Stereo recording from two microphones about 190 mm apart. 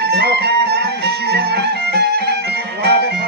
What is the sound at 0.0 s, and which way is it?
Music, 55° right (ahead or behind).